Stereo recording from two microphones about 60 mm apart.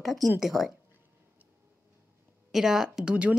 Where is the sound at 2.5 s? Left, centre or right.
Centre.